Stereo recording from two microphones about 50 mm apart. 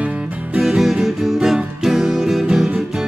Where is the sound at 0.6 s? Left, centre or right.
Centre.